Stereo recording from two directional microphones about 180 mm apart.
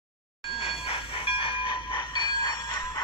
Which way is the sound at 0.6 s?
30° left (ahead or behind).